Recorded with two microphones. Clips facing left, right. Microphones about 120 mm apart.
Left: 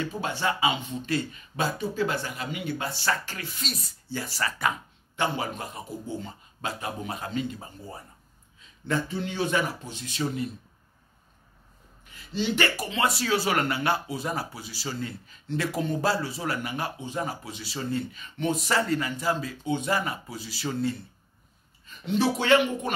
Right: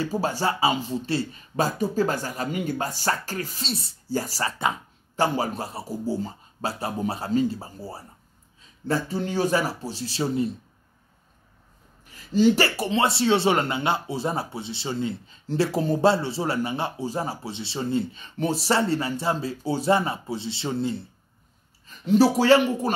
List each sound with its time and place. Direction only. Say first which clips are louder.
0.0 s speech: right 4 dB; 35° right (ahead or behind)
5.1 s speech: right 5 dB; 40° right (ahead or behind)
12.1 s speech: right 10 dB; 40° right (ahead or behind)
21.8 s speech: right 7 dB; 40° right (ahead or behind)